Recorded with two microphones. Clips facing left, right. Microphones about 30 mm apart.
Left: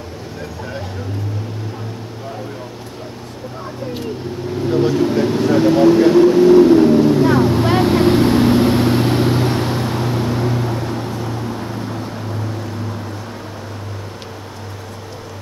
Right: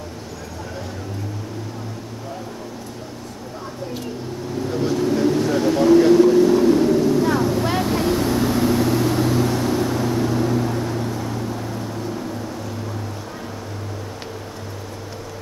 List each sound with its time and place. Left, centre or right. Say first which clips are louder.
4.6 s vehicle: left 5 dB; left